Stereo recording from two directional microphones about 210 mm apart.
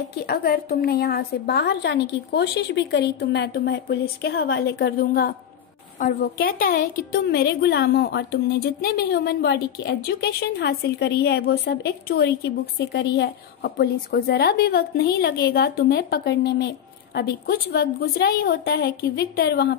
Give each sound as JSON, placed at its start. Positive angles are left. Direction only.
{"t": 0.3, "sound": "a woman's voice", "side_deg": 45}